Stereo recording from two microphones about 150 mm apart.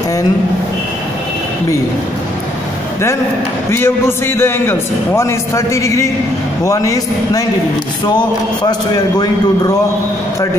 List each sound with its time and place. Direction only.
3.7 s a man's voice: 15° left (ahead or behind)